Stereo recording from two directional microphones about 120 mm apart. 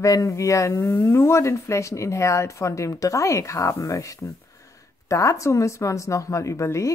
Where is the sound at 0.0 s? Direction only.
30° left (ahead or behind).